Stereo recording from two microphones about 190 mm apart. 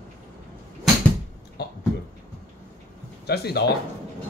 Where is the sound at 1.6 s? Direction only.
60° left (ahead or behind).